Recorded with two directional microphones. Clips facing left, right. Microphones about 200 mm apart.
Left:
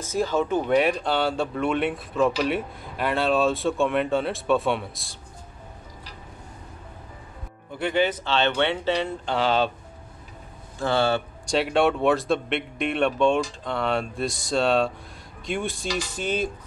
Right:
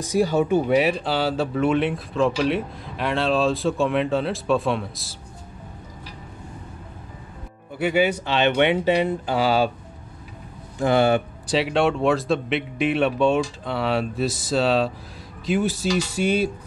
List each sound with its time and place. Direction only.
0.0 s speech: 15° right (ahead or behind)
7.8 s speech: 10° right (ahead or behind)
10.8 s speech: 15° right (ahead or behind)
11.4 s speech: centre (ahead or behind)